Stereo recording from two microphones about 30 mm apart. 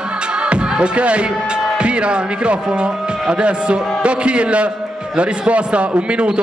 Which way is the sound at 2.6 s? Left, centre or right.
Right.